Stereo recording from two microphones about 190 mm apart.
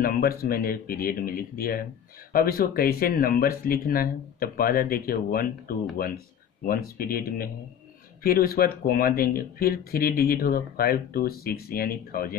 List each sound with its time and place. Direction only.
0.0 s speech: 50° left (ahead or behind)